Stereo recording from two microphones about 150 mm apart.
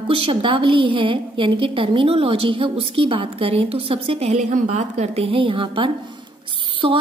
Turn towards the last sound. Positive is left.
turn(degrees=-35)  # may be behind; listen again after turning